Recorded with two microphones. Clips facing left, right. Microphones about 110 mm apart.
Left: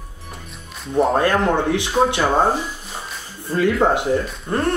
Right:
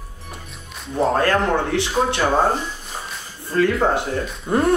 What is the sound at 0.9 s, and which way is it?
Speech, 20° left (ahead or behind).